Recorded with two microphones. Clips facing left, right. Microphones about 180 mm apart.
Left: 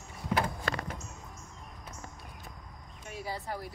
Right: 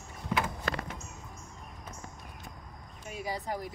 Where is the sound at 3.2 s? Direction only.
15° right (ahead or behind).